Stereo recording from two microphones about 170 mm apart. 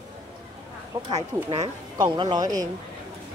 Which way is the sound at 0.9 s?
25° right (ahead or behind).